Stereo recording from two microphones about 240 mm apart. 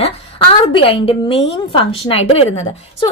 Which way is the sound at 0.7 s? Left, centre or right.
Left.